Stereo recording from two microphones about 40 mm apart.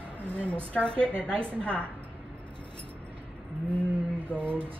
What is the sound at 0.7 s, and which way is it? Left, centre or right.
A woman's voice, left.